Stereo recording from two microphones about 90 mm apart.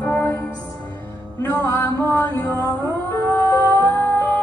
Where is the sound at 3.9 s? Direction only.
25° left (ahead or behind).